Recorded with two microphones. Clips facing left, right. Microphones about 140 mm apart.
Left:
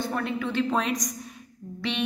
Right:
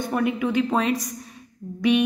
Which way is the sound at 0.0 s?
15° right (ahead or behind).